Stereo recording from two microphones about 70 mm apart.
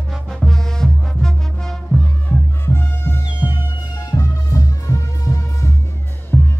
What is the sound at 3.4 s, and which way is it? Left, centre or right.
Music, left.